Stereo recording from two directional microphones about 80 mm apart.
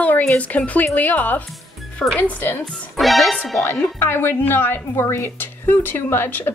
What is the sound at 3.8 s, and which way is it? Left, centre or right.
Speech, left.